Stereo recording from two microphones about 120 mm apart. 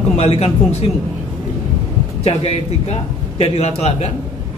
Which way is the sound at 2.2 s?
55° left (ahead or behind).